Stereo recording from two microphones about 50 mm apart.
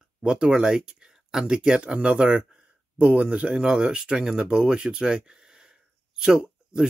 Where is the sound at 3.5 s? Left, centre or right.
Centre.